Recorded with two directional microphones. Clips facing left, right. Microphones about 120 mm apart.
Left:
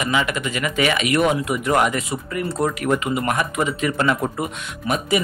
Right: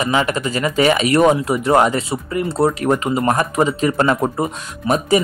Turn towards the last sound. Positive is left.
turn(degrees=-40)  # may be behind; listen again after turning